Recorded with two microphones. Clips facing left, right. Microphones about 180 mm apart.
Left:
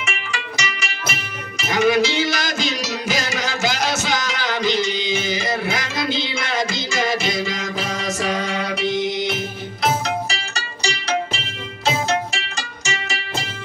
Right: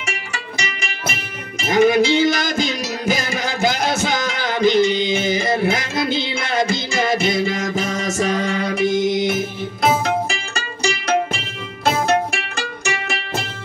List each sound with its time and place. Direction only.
0.7 s music: 50° right (ahead or behind)